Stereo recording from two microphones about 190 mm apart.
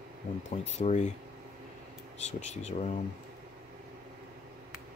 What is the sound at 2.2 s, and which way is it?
Speech, 35° left (ahead or behind).